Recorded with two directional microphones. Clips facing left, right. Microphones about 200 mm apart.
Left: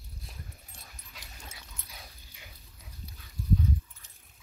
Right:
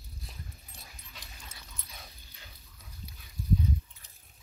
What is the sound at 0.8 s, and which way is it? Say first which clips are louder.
Dog: right 1 dB; 5° left (ahead or behind).